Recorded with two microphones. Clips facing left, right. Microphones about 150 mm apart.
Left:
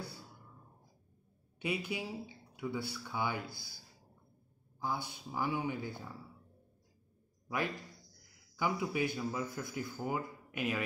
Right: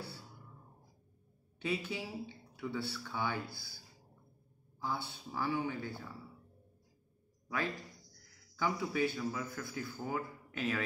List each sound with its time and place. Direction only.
1.6 s speech: 15° left (ahead or behind)
4.7 s speech: 15° left (ahead or behind)
7.4 s speech: 15° left (ahead or behind)